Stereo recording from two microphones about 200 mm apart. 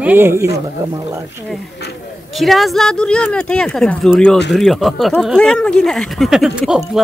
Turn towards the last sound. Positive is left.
turn(degrees=0)  # may be behind; listen again after turning